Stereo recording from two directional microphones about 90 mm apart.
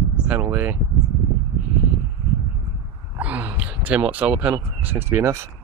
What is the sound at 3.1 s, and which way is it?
Speech, 15° right (ahead or behind).